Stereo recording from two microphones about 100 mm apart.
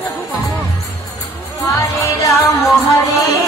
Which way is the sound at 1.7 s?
30° left (ahead or behind).